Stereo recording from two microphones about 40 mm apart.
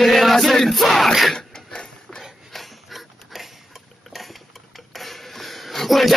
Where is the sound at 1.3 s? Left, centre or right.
Centre.